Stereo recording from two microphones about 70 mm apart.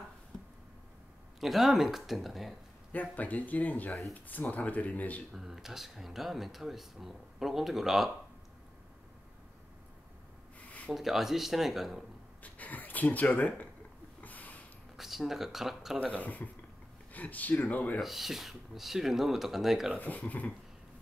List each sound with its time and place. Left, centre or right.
1.4 s speech: centre
2.9 s speech: left
5.3 s speech: centre
10.9 s speech: centre
12.4 s speech: left
14.2 s a sound: left
15.0 s speech: centre
16.0 s speech: left
18.0 s speech: centre
20.0 s speech: left